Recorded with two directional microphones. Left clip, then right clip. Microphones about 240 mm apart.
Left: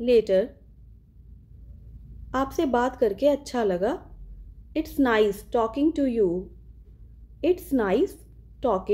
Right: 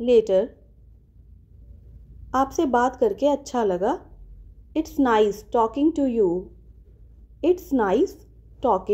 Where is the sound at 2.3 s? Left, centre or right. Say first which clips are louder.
Right 4 dB; centre.